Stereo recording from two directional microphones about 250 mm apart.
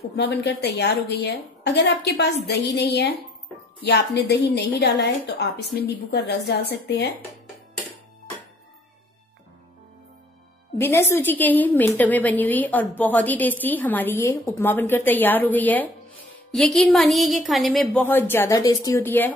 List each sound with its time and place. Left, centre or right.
0.1 s a woman's voice: left
10.8 s a woman's voice: centre